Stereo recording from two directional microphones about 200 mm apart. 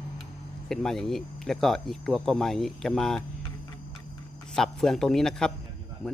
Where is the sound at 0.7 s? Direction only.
Centre (ahead or behind).